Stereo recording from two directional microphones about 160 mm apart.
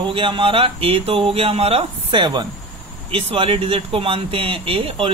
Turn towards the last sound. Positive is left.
turn(degrees=-35)  # may be behind; listen again after turning